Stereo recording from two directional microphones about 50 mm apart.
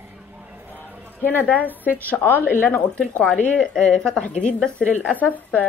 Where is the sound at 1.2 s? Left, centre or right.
Left.